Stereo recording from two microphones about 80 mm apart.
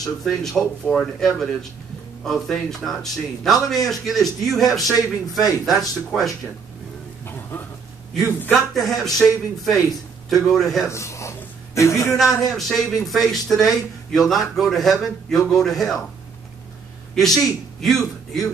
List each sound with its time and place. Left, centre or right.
0.2 s a man's voice: centre
8.5 s a man's voice: centre
10.9 s a sound: left
12.4 s a man's voice: centre
17.1 s a man's voice: centre